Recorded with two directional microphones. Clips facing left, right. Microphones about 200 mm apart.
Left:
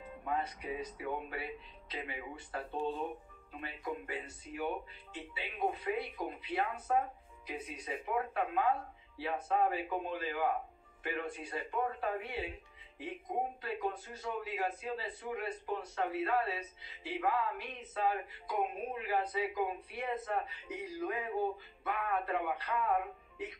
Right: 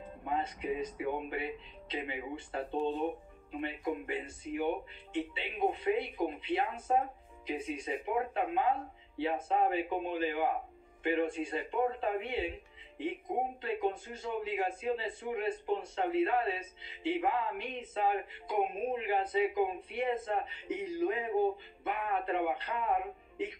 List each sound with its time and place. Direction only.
0.2 s a man's voice: 25° right (ahead or behind)
13.6 s a man's voice: 25° right (ahead or behind)